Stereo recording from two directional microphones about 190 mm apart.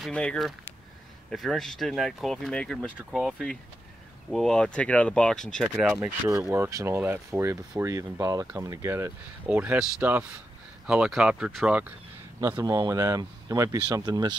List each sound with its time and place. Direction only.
0.0 s speech: 5° left (ahead or behind)
6.0 s speech: 15° right (ahead or behind)
12.4 s speech: 15° right (ahead or behind)